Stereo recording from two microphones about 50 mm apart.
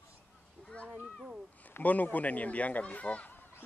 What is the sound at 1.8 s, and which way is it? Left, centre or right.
Speech, left.